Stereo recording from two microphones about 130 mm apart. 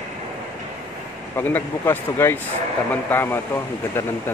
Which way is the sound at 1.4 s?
15° left (ahead or behind).